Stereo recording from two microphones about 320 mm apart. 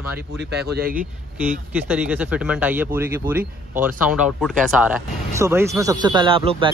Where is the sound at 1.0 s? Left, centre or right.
Centre.